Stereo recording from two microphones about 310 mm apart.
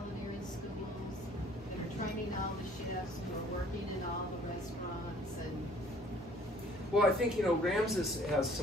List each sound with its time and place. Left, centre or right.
7.0 s speech: centre